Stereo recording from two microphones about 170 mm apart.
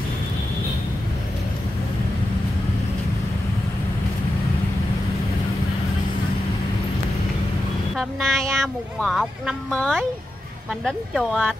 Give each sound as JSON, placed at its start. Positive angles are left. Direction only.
{"t": 7.9, "sound": "speech", "side_deg": 0}